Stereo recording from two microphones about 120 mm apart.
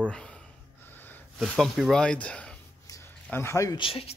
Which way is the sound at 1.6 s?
Centre (ahead or behind).